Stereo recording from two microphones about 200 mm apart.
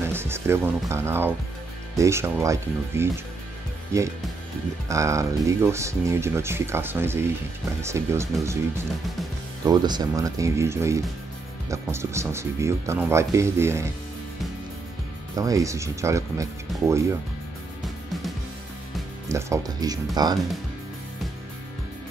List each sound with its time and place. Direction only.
0.0 s speech: 10° right (ahead or behind)
9.7 s speech: 20° right (ahead or behind)
15.3 s speech: 15° right (ahead or behind)
19.2 s speech: 15° right (ahead or behind)